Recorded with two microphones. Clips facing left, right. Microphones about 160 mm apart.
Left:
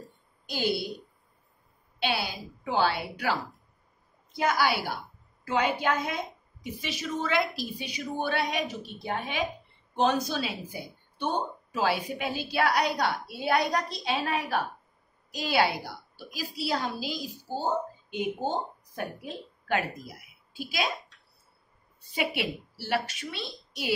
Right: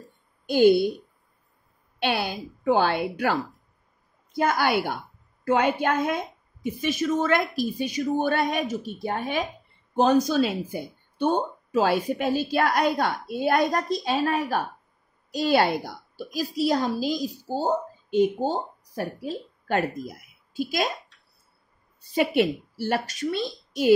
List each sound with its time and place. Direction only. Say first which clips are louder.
0.5 s speech: right 12 dB; 50° right (ahead or behind)
2.0 s speech: right 4 dB; 55° right (ahead or behind)
22.1 s speech: right 9 dB; 45° right (ahead or behind)